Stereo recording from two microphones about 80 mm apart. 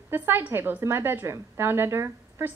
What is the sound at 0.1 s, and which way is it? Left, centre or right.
A woman's voice, right.